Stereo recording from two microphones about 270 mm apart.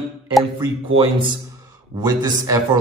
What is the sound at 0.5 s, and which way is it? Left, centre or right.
A man's voice, right.